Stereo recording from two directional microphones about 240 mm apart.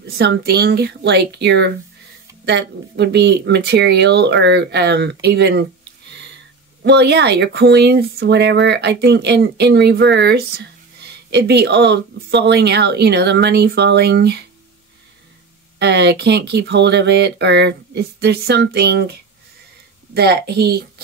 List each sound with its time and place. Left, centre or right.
0.0 s speech: right
6.8 s speech: right
15.8 s speech: right
20.2 s a woman's voice: right